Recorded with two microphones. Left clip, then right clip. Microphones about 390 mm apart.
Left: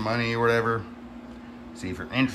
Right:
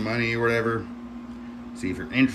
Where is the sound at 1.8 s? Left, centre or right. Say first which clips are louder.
Right 5 dB; left.